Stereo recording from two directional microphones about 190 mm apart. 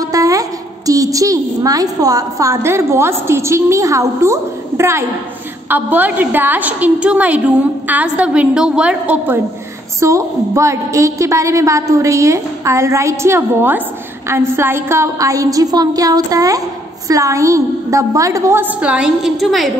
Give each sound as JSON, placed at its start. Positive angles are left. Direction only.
{"t": 0.0, "sound": "a woman's voice", "side_deg": -20}